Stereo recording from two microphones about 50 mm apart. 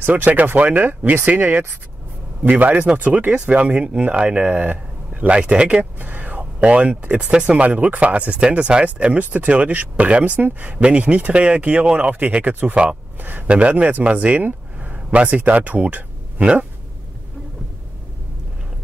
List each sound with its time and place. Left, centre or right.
0.0 s speech: right
5.3 s speech: centre
5.9 s a sound: right
7.1 s speech: centre
7.6 s a man's voice: right
13.5 s speech: right